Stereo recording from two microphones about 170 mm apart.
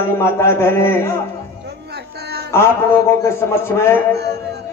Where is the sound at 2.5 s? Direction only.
15° left (ahead or behind).